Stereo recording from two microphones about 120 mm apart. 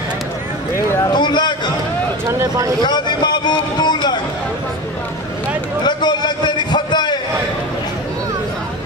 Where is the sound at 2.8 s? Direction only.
35° left (ahead or behind).